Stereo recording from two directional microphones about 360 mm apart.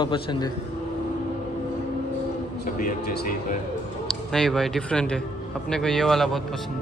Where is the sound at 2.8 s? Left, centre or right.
Left.